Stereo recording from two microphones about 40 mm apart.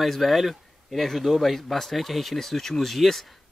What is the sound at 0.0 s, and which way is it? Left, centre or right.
Speech, centre.